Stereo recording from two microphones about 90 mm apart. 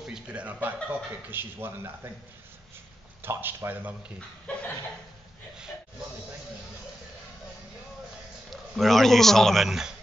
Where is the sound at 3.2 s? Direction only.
25° right (ahead or behind).